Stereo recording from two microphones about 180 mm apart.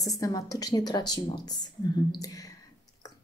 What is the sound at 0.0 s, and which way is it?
A woman's voice, 20° left (ahead or behind).